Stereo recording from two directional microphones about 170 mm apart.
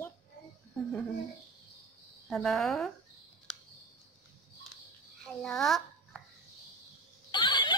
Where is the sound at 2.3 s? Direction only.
Centre (ahead or behind).